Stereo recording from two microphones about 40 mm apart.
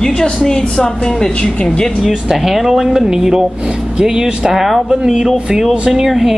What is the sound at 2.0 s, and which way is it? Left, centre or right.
Speech, centre.